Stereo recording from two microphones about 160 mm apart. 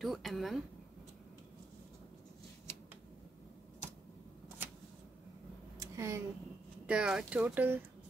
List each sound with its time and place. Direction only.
0.0 s speech: centre (ahead or behind)
5.8 s a sound: 20° right (ahead or behind)
6.9 s speech: 5° right (ahead or behind)